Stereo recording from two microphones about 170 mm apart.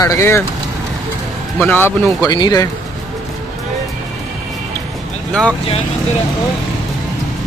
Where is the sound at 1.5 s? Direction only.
10° left (ahead or behind).